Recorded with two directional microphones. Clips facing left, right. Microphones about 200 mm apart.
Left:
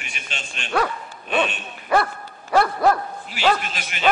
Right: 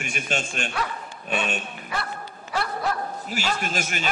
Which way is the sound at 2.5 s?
60° left (ahead or behind).